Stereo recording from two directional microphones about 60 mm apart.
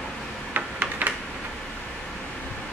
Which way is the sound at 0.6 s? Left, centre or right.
Right.